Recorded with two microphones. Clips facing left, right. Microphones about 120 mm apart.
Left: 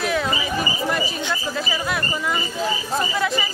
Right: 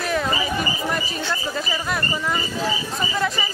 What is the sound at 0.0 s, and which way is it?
Chatter, centre (ahead or behind).